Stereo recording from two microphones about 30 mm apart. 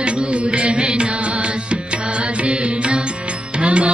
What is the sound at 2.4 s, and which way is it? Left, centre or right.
Music, right.